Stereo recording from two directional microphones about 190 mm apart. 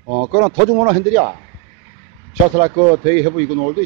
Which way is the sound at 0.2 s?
25° right (ahead or behind).